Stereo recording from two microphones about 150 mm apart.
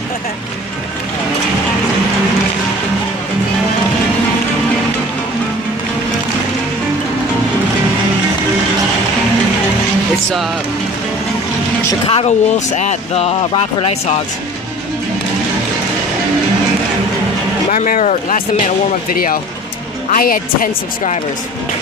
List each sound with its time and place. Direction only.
12.1 s speech: 45° left (ahead or behind)
17.6 s speech: 55° left (ahead or behind)